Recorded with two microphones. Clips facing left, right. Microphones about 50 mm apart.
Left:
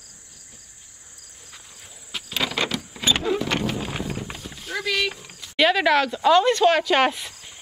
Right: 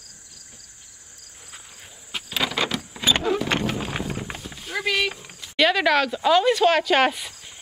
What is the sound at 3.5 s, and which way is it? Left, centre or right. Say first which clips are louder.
Horse: even; centre.